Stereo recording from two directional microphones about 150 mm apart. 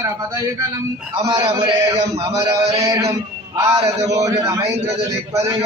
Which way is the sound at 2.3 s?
40° right (ahead or behind).